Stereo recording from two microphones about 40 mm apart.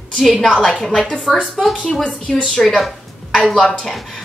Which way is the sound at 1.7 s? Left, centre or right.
Left.